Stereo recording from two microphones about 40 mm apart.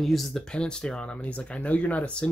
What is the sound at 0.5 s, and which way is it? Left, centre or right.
Speech, left.